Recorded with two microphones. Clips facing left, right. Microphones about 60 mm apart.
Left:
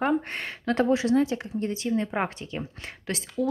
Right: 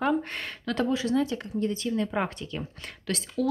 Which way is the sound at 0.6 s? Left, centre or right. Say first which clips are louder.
Left 4 dB; left.